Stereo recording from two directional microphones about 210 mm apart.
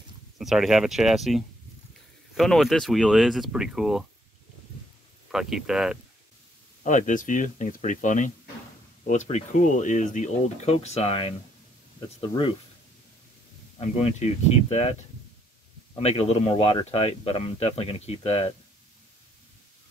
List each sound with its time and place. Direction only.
0.4 s speech: centre (ahead or behind)
5.3 s speech: centre (ahead or behind)
6.8 s speech: 35° left (ahead or behind)
13.7 s speech: 30° left (ahead or behind)
16.0 s speech: 30° left (ahead or behind)